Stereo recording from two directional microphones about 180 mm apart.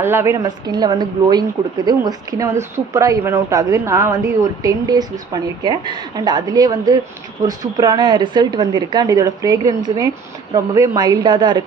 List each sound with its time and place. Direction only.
0.0 s a woman's voice: 15° right (ahead or behind)